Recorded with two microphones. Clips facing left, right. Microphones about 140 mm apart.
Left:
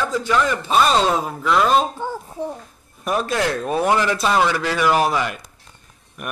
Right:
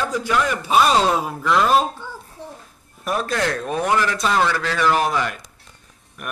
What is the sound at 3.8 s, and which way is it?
A man's voice, 20° left (ahead or behind).